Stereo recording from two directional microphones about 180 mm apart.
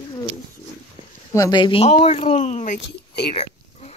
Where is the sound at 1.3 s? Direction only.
20° left (ahead or behind); by 2.7 s 40° left (ahead or behind).